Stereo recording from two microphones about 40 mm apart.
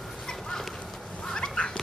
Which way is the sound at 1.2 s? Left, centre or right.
Centre.